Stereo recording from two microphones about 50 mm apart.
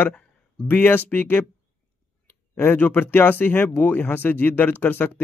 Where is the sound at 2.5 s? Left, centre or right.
Left.